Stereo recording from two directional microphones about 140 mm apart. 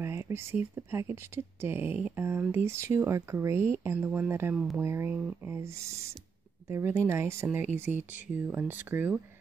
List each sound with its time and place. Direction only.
0.0 s speech: 15° right (ahead or behind)